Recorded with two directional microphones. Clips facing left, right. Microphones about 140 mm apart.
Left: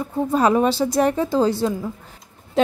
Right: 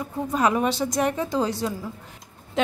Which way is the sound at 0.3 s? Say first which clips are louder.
Left 5 dB; 30° left (ahead or behind).